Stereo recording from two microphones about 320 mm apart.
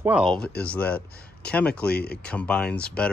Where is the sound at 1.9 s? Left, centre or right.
Left.